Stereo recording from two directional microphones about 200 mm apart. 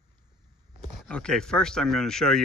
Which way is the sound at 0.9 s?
Centre (ahead or behind).